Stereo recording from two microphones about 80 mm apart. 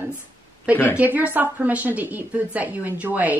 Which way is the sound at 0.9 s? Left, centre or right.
Centre.